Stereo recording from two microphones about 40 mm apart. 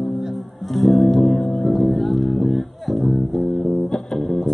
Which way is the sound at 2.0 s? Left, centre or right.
Centre.